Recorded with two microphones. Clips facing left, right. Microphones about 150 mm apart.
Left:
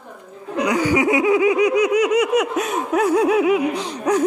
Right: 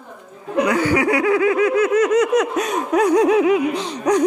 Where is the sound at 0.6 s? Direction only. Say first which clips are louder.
Even; 15° left (ahead or behind).